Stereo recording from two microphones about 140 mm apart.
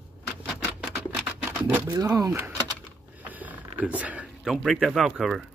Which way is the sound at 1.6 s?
15° right (ahead or behind).